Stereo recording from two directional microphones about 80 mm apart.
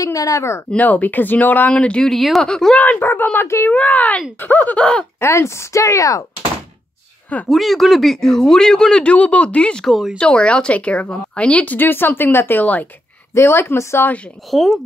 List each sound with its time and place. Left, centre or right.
0.0 s speech: left
0.7 s speech: centre
2.8 s speech: left
3.7 s speech: centre
5.2 s speech: left
7.4 s speech: centre
9.8 s speech: centre
10.1 s speech: centre
13.3 s speech: left
14.5 s speech: centre